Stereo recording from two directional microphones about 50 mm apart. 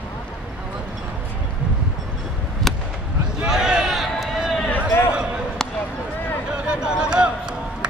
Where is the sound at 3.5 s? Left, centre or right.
Centre.